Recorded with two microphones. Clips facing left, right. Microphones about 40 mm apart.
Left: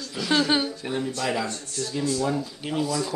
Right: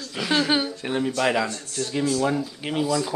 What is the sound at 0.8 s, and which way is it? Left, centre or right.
Speech, right.